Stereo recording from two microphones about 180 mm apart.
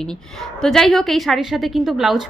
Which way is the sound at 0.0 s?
5° left (ahead or behind).